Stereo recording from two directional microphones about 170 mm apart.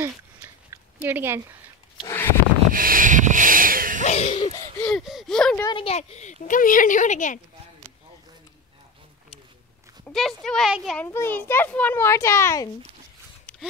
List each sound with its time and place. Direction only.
0.0 s a sound: 15° right (ahead or behind)
2.7 s a sound: 55° right (ahead or behind)
4.0 s laughter: 40° left (ahead or behind)
4.7 s a child's voice: 5° left (ahead or behind)
5.6 s speech: 25° left (ahead or behind)
5.9 s speech: 40° left (ahead or behind)
10.1 s a child's voice: centre (ahead or behind)
11.1 s a child's voice: 15° left (ahead or behind)
13.5 s a sound: 10° left (ahead or behind)